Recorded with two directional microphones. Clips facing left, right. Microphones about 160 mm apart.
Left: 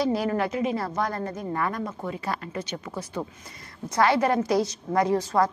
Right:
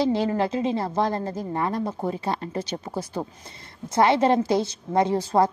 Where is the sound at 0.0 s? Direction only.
25° right (ahead or behind).